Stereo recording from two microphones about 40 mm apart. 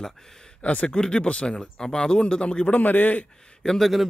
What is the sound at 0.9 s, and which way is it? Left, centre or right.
Speech, left.